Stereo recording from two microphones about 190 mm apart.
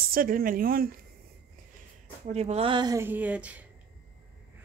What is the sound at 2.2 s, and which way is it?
Speech, 35° right (ahead or behind).